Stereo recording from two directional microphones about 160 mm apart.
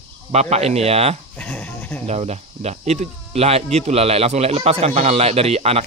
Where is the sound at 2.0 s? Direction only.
45° right (ahead or behind).